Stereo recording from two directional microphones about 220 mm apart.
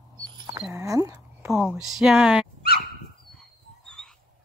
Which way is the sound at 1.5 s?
Centre (ahead or behind).